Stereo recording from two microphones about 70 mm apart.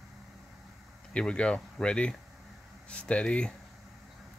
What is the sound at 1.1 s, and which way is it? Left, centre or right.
Speech, centre.